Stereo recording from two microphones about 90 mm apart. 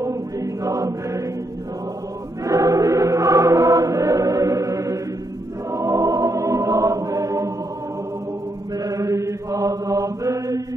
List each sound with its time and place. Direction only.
0.0 s choir: 35° right (ahead or behind)
2.4 s choir: 40° right (ahead or behind)
8.7 s chant: 40° right (ahead or behind)